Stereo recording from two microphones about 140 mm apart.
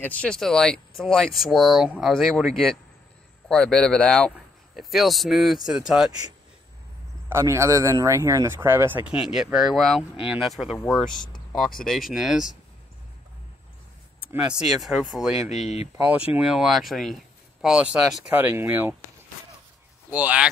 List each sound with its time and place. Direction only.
0.0 s speech: 10° left (ahead or behind)
7.2 s speech: 20° right (ahead or behind); by 10.8 s 5° right (ahead or behind)
11.8 s speech: centre (ahead or behind)
14.3 s speech: 5° right (ahead or behind)
15.6 s speech: 50° left (ahead or behind)
16.0 s speech: 10° right (ahead or behind)
20.1 s speech: 10° right (ahead or behind)